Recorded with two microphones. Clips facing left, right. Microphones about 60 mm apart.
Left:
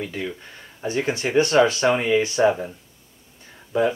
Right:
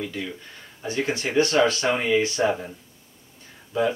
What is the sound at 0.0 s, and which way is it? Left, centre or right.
Speech, left.